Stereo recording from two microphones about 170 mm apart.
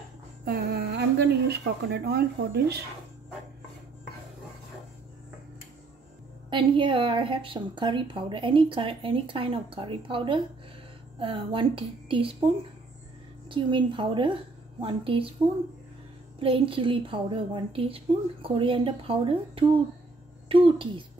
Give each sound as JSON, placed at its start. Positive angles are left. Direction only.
{"t": 0.5, "sound": "speech", "side_deg": -65}
{"t": 6.5, "sound": "a woman's voice", "side_deg": -30}
{"t": 13.5, "sound": "a woman's voice", "side_deg": -30}
{"t": 16.3, "sound": "a woman's voice", "side_deg": -30}